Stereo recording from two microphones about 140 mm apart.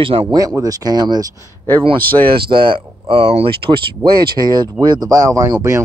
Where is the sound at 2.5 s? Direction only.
35° right (ahead or behind).